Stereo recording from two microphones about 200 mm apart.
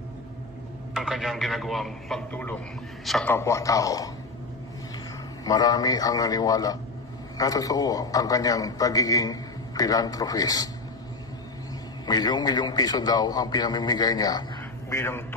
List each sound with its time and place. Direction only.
0.9 s a man's voice: centre (ahead or behind)
3.3 s a man's voice: 15° left (ahead or behind)
5.4 s a man's voice: 20° left (ahead or behind)
12.1 s a man's voice: 20° left (ahead or behind)